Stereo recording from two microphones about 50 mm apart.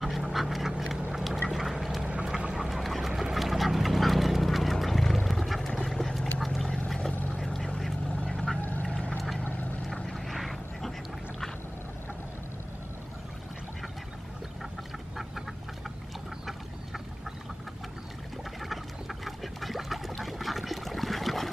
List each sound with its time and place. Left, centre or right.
0.0 s duck: centre
5.8 s a sound: centre
7.4 s vehicle: centre
8.2 s vehicle: left
8.5 s vehicle: left
8.8 s vehicle: centre
9.1 s vehicle: centre
9.4 s vehicle: left
10.0 s vehicle: centre
18.6 s a sound: centre